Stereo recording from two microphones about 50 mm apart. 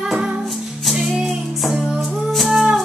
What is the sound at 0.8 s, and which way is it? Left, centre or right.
Music, centre.